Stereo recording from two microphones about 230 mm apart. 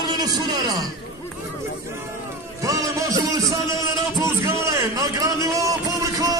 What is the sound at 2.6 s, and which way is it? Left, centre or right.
Music, centre.